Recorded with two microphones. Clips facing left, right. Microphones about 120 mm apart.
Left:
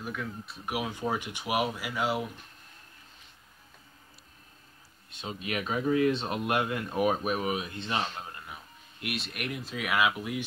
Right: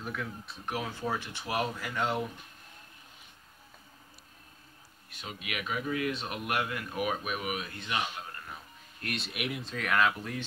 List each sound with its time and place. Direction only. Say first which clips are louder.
0.0 s speech: left 1 dB; centre (ahead or behind)
0.7 s speech: left 3 dB; 15° left (ahead or behind)
5.1 s speech: left 5 dB; 25° left (ahead or behind)
7.5 s speech: left 3 dB; 20° left (ahead or behind)
8.5 s speech: even; 5° left (ahead or behind)